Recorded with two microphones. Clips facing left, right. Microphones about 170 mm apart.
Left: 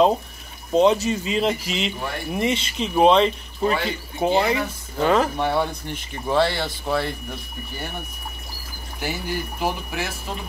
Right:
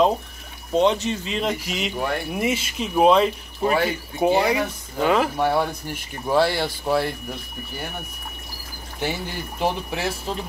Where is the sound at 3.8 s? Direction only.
15° right (ahead or behind).